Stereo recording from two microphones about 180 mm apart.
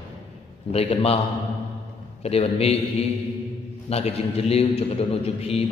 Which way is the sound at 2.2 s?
35° left (ahead or behind).